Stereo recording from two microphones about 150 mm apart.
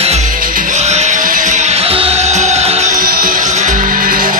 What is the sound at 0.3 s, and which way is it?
Music, 65° right (ahead or behind).